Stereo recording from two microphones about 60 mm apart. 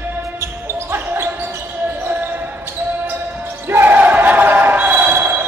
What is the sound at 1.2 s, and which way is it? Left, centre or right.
Basketball bounce, right.